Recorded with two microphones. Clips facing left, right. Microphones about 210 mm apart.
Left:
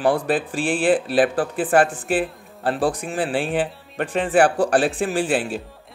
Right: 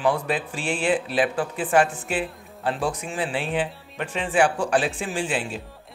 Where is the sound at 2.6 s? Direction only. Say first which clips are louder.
Left 4 dB; 35° left (ahead or behind).